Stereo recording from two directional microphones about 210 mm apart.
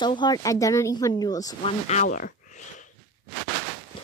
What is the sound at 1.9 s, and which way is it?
Speech, 40° left (ahead or behind).